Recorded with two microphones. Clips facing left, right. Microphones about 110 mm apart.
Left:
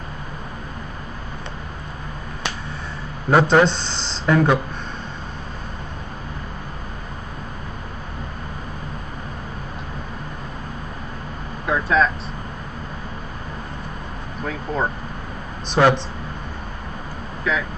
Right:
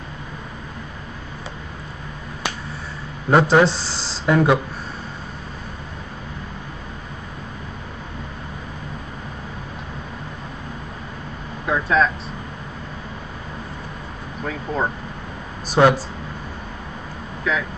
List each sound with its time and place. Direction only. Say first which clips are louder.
3.3 s speech: even; centre (ahead or behind)
11.6 s a sound: even; centre (ahead or behind)
14.4 s speech: even; centre (ahead or behind)
17.4 s speech: even; centre (ahead or behind)